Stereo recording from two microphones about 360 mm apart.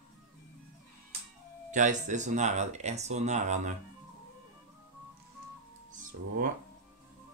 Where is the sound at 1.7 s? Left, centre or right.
Right.